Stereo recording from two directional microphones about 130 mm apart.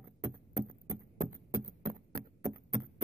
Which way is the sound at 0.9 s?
25° right (ahead or behind).